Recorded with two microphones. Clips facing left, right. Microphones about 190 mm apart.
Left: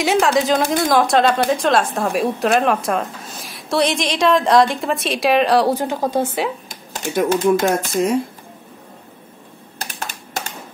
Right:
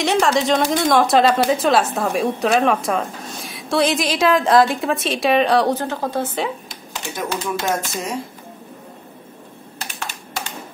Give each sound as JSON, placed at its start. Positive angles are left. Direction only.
{"t": 0.0, "sound": "speech", "side_deg": 0}
{"t": 5.8, "sound": "a woman's voice", "side_deg": 15}
{"t": 6.7, "sound": "speech", "side_deg": 50}
{"t": 9.8, "sound": "typing", "side_deg": 40}